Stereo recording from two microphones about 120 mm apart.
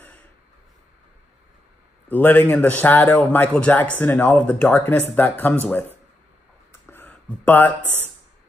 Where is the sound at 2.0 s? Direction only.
15° left (ahead or behind).